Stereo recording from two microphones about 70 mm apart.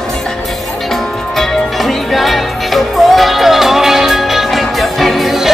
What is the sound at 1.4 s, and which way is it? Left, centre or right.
Music, centre.